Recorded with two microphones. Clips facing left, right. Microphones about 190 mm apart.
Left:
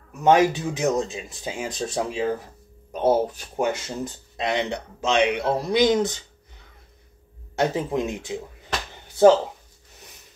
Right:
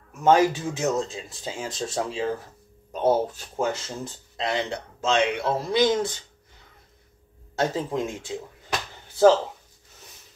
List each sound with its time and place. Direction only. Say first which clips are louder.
0.1 s speech: left 1 dB; 15° left (ahead or behind)
7.5 s speech: left 2 dB; 20° left (ahead or behind)